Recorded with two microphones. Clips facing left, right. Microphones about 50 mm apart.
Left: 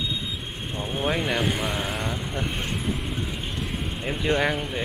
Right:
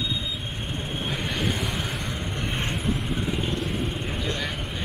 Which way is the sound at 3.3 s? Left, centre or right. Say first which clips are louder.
Right 4 dB; centre.